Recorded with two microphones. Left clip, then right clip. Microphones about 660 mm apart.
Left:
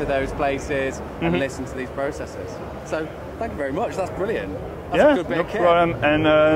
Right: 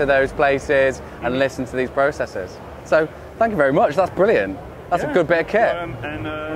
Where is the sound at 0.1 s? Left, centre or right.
Right.